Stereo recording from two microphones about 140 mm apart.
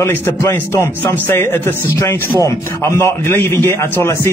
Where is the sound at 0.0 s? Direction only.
15° left (ahead or behind).